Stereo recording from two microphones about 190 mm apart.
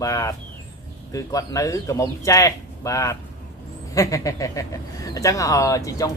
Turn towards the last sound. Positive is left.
turn(degrees=20)  # may be behind; listen again after turning